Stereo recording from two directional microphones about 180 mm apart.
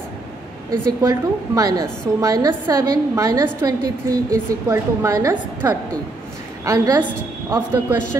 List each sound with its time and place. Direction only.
0.7 s a woman's voice: 20° right (ahead or behind)